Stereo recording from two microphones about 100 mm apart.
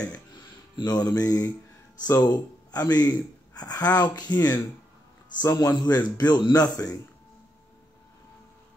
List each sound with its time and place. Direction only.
0.7 s speech: 45° left (ahead or behind)